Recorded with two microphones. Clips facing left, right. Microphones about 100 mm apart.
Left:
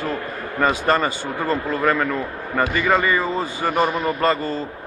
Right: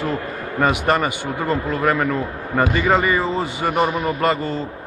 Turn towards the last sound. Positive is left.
turn(degrees=-15)  # may be behind; listen again after turning